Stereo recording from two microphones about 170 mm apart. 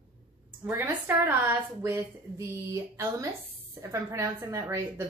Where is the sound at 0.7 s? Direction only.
15° right (ahead or behind).